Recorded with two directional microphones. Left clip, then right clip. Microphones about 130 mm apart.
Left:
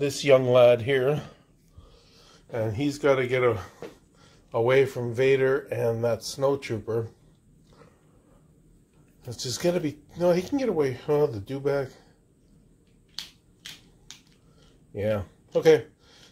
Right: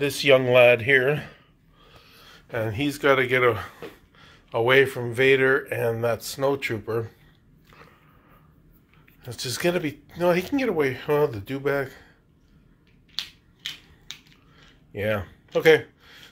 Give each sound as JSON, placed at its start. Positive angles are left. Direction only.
{"t": 0.0, "sound": "speech", "side_deg": 15}
{"t": 9.3, "sound": "speech", "side_deg": 15}
{"t": 13.1, "sound": "finger snapping", "side_deg": 45}
{"t": 14.9, "sound": "a sound", "side_deg": 10}